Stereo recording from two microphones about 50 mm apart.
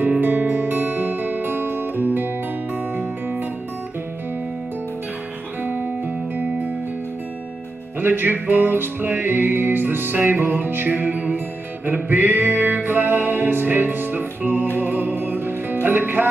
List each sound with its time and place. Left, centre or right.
0.0 s music: right
5.6 s music: right
8.0 s music: right